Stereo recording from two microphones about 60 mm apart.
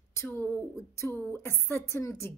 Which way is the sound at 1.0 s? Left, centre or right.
Left.